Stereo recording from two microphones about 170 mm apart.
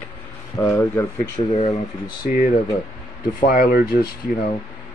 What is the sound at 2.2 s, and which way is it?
Speech, 50° left (ahead or behind).